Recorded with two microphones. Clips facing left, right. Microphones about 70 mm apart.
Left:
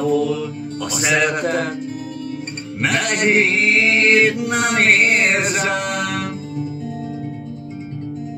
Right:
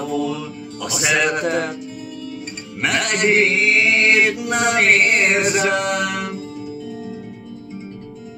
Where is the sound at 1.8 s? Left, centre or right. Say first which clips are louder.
Left 4 dB; left.